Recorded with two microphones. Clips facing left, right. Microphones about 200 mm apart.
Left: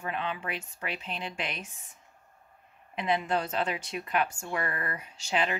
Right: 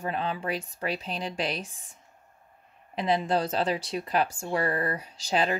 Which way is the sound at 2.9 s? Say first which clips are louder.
Right 3 dB; 35° right (ahead or behind).